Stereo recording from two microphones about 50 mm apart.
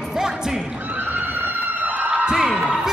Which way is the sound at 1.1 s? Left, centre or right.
Right.